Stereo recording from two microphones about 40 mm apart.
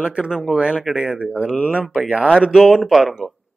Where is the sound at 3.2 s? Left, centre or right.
Centre.